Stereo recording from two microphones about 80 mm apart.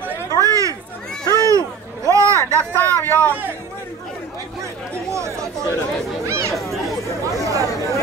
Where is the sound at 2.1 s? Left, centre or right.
Right.